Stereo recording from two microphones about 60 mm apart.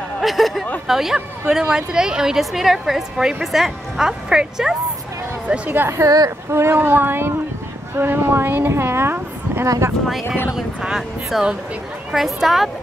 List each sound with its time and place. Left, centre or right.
0.2 s a woman's voice: centre
5.7 s speech: right
6.0 s speech: right
6.5 s speech: right
10.5 s a woman's voice: centre